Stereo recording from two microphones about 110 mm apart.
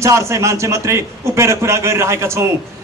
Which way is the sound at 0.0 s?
25° right (ahead or behind).